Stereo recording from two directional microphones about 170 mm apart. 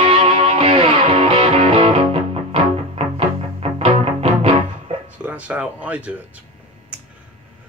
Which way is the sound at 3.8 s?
35° right (ahead or behind).